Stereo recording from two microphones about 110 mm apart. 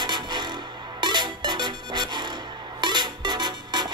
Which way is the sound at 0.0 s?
40° right (ahead or behind).